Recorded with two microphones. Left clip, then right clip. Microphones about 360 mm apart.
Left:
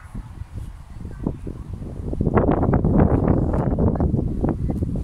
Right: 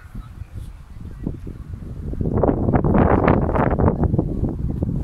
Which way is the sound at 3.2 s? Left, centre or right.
Right.